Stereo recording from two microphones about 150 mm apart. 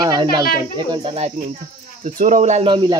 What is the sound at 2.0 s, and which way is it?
Speech, 60° right (ahead or behind).